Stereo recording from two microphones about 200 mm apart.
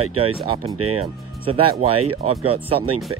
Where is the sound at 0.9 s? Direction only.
30° right (ahead or behind).